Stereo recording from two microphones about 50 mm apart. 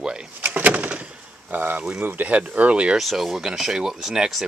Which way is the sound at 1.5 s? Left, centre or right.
Right.